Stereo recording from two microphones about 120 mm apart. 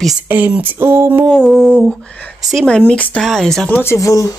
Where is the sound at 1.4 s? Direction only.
5° right (ahead or behind).